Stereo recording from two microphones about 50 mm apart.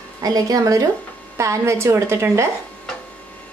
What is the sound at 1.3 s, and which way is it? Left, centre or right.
Speech, right.